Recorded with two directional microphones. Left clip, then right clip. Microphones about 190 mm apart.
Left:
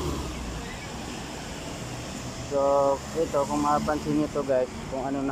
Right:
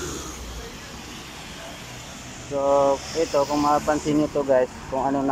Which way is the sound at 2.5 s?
Centre (ahead or behind).